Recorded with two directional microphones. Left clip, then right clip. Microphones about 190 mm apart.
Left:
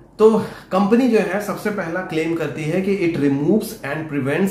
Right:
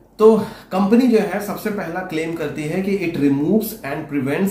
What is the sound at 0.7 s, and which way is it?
Speech, 20° left (ahead or behind).